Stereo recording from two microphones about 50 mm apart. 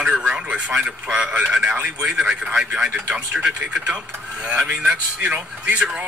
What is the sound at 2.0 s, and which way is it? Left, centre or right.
A man's voice, centre.